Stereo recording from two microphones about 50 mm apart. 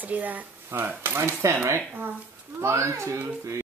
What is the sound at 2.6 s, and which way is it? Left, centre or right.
Speech, right.